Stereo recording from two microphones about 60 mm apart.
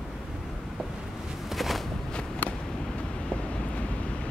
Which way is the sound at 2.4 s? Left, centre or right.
Left.